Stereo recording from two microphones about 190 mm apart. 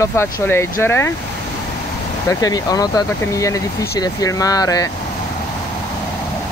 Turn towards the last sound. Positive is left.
turn(degrees=20)  # may be behind; listen again after turning